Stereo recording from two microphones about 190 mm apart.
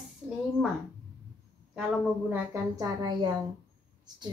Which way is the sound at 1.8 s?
10° right (ahead or behind).